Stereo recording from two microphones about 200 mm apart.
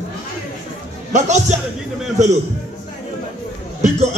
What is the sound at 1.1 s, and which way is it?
Speech, 35° right (ahead or behind).